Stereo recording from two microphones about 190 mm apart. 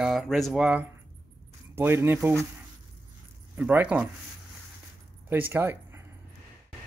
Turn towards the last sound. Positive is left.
turn(degrees=-10)  # may be behind; listen again after turning